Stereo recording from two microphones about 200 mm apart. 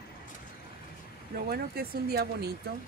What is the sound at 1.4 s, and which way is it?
Speech, 50° right (ahead or behind).